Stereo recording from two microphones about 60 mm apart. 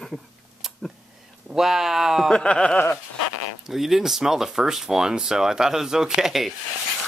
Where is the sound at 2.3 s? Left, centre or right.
Centre.